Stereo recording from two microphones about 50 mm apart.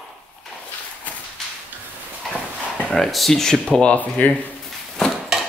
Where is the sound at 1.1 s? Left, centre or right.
Left.